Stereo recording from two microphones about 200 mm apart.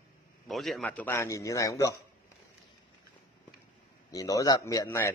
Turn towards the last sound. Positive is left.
turn(degrees=15)  # may be behind; listen again after turning